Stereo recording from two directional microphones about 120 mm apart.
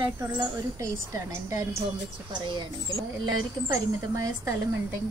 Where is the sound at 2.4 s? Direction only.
40° right (ahead or behind).